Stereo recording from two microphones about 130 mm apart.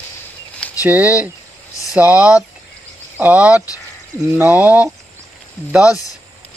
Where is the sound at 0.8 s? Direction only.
10° right (ahead or behind).